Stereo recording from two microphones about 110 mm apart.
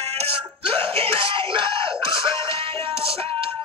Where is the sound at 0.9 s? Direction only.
55° right (ahead or behind).